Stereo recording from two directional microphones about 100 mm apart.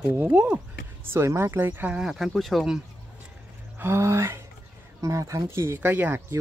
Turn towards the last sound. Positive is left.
turn(degrees=-15)  # may be behind; listen again after turning